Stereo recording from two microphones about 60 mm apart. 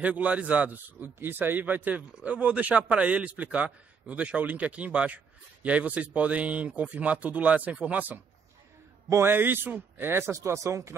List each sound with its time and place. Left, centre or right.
0.0 s a man's voice: right
9.2 s speech: right